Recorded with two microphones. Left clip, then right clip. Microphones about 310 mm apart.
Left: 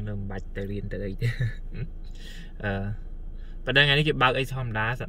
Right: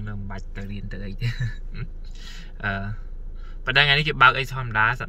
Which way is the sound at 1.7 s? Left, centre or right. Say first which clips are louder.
Right 1 dB; centre.